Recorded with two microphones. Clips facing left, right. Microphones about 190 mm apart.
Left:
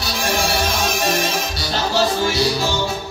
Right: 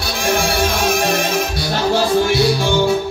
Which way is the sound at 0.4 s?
55° right (ahead or behind).